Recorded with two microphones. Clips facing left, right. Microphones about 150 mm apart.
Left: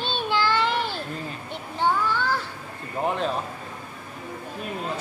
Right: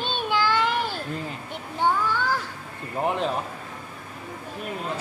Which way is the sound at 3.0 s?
15° right (ahead or behind).